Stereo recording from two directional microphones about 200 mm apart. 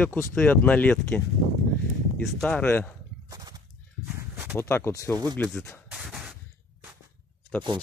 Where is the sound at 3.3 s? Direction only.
20° right (ahead or behind).